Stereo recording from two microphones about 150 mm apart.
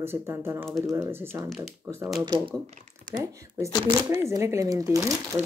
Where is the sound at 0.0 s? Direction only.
15° right (ahead or behind).